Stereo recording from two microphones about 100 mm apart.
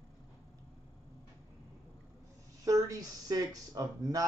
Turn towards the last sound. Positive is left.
turn(degrees=-35)  # may be behind; listen again after turning